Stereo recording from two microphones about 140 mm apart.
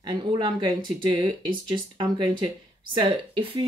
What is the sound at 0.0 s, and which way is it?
Speech, 35° right (ahead or behind).